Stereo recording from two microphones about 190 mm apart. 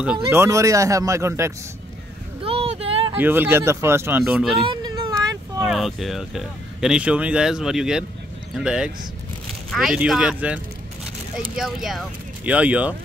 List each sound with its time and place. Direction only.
0.0 s speech: 10° right (ahead or behind)
2.4 s a sound: 30° right (ahead or behind)
3.2 s speech: 10° right (ahead or behind)
4.2 s speech: 5° right (ahead or behind)
4.6 s a sound: 20° right (ahead or behind)
5.6 s speech: centre (ahead or behind)